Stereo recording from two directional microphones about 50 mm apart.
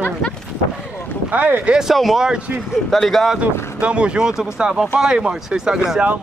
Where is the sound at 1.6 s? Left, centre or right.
Centre.